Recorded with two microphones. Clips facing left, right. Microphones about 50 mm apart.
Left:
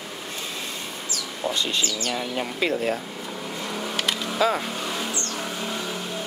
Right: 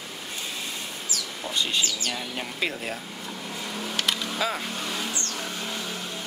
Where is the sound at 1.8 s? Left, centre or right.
Centre.